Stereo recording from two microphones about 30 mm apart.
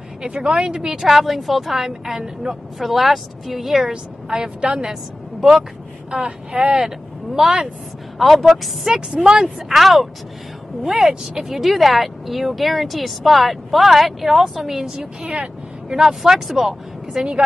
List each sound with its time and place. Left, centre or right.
0.4 s a woman's voice: right
1.0 s speech: centre
2.5 s a woman's voice: right
2.8 s speech: centre
4.3 s a woman's voice: right
5.4 s speech: centre
6.0 s speech: right
8.2 s speech: centre
8.9 s a woman's voice: right
9.7 s speech: centre
15.3 s vehicle: right
16.0 s speech: centre